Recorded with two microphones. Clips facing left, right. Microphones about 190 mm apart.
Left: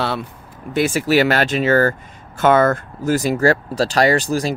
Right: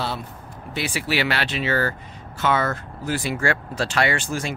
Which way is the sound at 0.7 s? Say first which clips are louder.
Left 9 dB; 45° left (ahead or behind).